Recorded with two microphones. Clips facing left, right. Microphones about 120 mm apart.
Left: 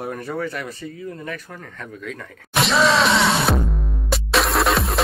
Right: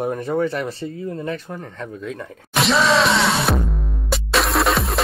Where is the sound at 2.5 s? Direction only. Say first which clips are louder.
Right 1 dB; centre (ahead or behind).